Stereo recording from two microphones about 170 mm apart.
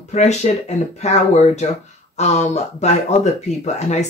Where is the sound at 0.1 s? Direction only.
40° left (ahead or behind).